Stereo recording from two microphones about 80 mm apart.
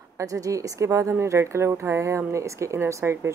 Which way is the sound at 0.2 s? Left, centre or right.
Right.